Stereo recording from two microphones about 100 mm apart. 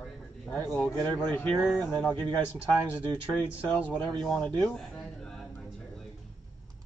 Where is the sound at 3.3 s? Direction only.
15° left (ahead or behind).